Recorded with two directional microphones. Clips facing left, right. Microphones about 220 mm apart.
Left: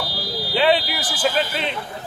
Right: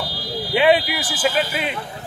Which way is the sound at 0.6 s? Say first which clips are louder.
Right 2 dB; 15° right (ahead or behind).